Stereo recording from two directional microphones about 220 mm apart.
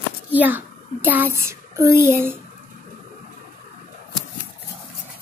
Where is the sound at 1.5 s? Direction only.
10° right (ahead or behind).